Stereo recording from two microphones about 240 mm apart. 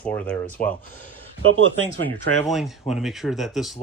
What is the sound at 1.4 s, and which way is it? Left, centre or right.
Speech, right.